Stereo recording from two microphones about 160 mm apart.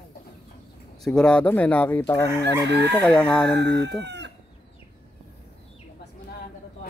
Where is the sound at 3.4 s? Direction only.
90° right.